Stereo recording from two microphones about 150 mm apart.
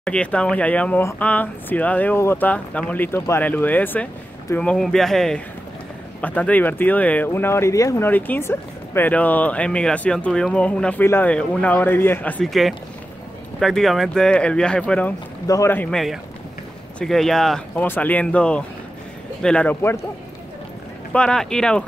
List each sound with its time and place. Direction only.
0.0 s speech: 10° left (ahead or behind)
15.4 s speech: 20° left (ahead or behind)
17.0 s speech: centre (ahead or behind)
21.1 s speech: 5° left (ahead or behind)